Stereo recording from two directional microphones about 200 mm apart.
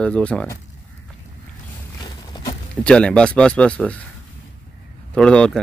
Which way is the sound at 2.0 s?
20° left (ahead or behind).